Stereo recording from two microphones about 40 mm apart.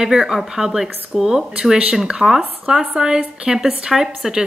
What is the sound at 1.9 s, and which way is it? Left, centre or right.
Speech, centre.